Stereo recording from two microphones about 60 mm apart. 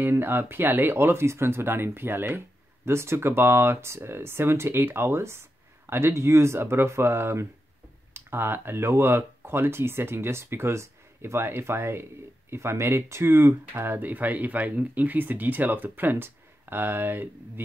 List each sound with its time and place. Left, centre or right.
0.0 s speech: right